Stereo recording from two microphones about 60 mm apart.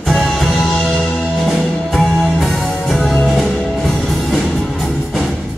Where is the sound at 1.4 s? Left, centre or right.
Centre.